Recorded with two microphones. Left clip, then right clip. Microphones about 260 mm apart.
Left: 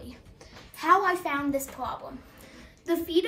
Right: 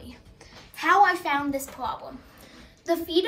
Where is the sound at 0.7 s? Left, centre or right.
Right.